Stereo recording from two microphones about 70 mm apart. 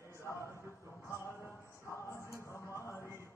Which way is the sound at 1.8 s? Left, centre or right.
Left.